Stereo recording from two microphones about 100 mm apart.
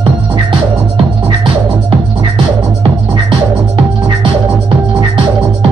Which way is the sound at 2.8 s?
50° right (ahead or behind).